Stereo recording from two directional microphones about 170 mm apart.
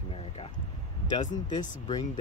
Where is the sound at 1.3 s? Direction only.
25° left (ahead or behind).